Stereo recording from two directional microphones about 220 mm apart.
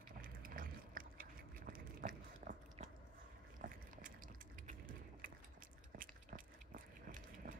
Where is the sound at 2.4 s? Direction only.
30° right (ahead or behind).